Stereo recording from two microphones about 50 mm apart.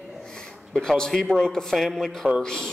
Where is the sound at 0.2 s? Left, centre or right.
Centre.